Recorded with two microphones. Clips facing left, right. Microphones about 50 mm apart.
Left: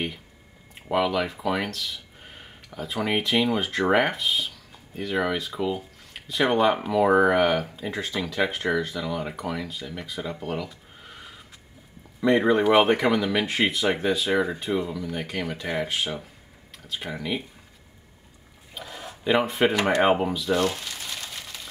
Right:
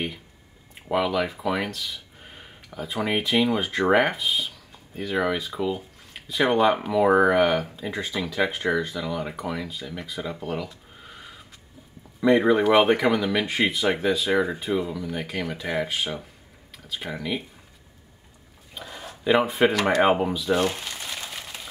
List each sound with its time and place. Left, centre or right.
0.8 s speech: centre
18.8 s a sound: centre
19.2 s speech: centre
19.7 s speech: centre
20.0 s speech: centre
20.5 s crumpling: centre